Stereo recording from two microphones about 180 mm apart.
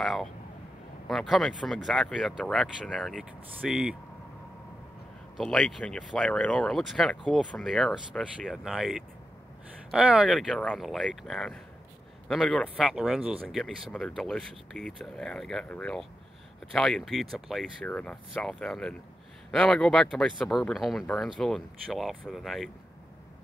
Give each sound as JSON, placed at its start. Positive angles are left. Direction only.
{"t": 0.0, "sound": "speech", "side_deg": 0}
{"t": 5.4, "sound": "speech", "side_deg": 0}